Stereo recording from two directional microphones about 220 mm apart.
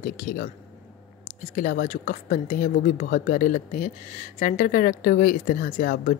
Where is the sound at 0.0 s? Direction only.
40° left (ahead or behind).